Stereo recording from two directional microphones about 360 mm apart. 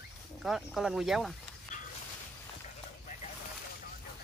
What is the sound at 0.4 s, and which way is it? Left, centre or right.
Speech, centre.